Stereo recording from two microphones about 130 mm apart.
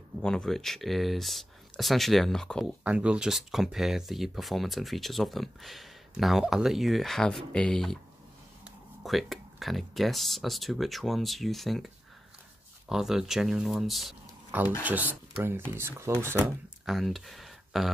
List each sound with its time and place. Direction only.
0.2 s speech: 5° left (ahead or behind)
2.8 s speech: 10° right (ahead or behind)
9.0 s speech: centre (ahead or behind)
14.8 s speech: 10° right (ahead or behind)
16.8 s speech: centre (ahead or behind)